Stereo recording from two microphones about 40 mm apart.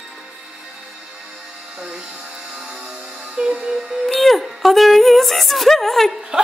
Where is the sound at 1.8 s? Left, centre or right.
Right.